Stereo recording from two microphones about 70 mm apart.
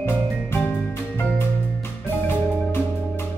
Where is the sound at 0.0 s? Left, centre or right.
Left.